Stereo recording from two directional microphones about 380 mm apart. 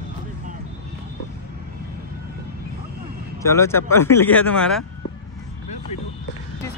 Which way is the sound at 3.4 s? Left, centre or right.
Centre.